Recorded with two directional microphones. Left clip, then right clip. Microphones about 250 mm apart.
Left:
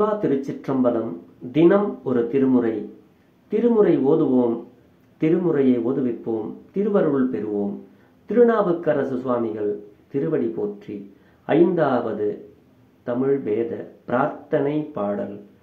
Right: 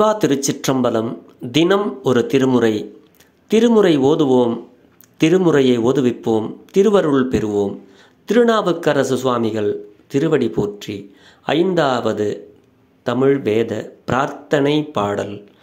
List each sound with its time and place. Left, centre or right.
0.0 s speech: right
13.0 s speech: right